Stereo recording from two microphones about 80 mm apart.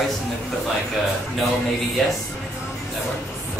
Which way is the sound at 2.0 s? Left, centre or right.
Centre.